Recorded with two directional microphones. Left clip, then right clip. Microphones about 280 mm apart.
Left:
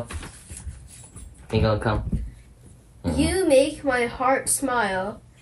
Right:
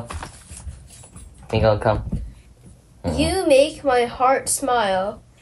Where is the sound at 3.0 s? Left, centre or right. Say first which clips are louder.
Right 3 dB; centre.